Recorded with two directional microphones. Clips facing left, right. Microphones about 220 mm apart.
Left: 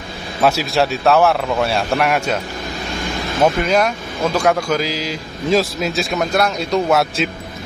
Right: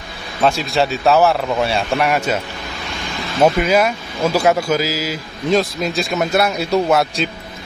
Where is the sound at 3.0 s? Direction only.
50° left (ahead or behind).